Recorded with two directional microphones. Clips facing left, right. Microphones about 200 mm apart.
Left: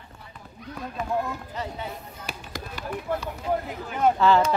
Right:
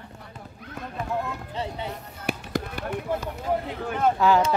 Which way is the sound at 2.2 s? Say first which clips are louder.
Right 10 dB; 65° right (ahead or behind).